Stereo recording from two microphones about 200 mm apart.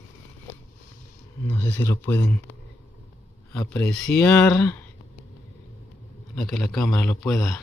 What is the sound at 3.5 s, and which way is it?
Speech, 5° left (ahead or behind).